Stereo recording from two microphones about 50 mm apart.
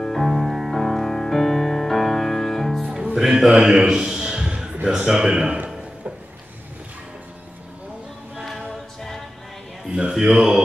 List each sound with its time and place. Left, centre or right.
0.0 s music: centre
3.2 s a man's voice: centre
8.4 s a capella: centre
9.8 s a sound: centre
10.1 s speech: centre